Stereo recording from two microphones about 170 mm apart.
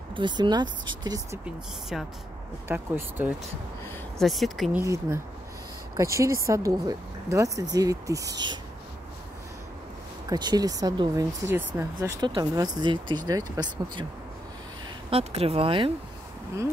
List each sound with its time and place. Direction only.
0.1 s speech: 25° right (ahead or behind)
1.4 s speech: 5° right (ahead or behind)
4.2 s speech: centre (ahead or behind)
4.7 s speech: 15° right (ahead or behind)
10.3 s speech: 25° right (ahead or behind)
15.0 s speech: 35° right (ahead or behind)